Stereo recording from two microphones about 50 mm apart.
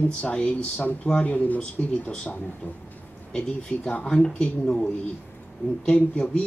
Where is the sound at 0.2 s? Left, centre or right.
Left.